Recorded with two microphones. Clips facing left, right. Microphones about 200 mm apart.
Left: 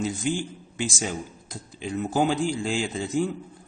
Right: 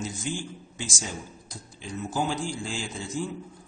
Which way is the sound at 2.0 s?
60° left (ahead or behind).